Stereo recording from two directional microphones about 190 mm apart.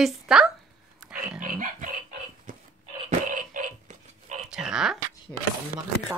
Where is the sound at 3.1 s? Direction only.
45° right (ahead or behind).